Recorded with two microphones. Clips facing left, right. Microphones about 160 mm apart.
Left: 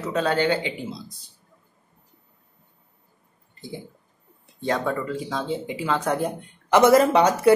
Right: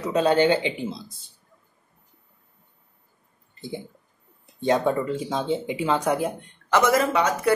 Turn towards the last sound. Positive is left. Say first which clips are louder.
# left 4 dB
turn(degrees=30)  # may be behind; listen again after turning